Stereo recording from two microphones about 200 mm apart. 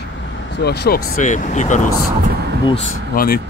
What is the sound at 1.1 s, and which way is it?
Speech, 40° left (ahead or behind).